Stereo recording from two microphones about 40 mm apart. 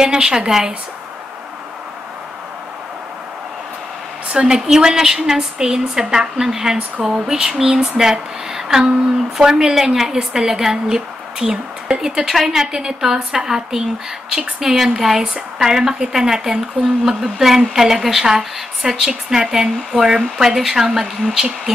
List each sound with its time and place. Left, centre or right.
0.0 s a woman's voice: centre
4.3 s a woman's voice: right
4.6 s a woman's voice: centre